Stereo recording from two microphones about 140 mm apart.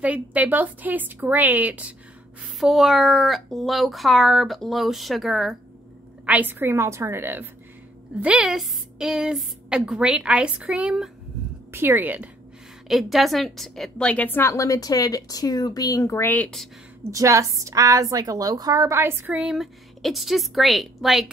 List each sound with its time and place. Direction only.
0.0 s a woman's voice: 10° right (ahead or behind)
6.2 s a woman's voice: 10° right (ahead or behind)
12.8 s a woman's voice: centre (ahead or behind)
17.0 s a woman's voice: 20° right (ahead or behind)
19.4 s speech: centre (ahead or behind)